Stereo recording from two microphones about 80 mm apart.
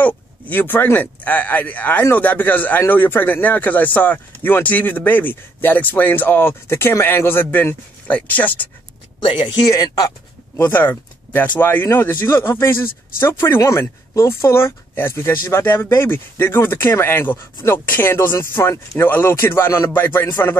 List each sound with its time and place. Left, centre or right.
0.0 s speech: left
9.2 s speech: left
9.7 s speech: left
10.7 s speech: left